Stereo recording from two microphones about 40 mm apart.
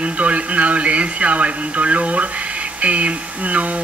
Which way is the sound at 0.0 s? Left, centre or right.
Right.